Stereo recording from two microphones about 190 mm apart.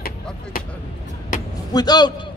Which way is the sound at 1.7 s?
20° left (ahead or behind).